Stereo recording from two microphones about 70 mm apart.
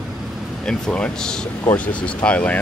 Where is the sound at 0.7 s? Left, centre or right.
Centre.